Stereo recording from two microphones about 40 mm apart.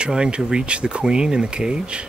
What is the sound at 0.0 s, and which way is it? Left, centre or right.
Speech, right.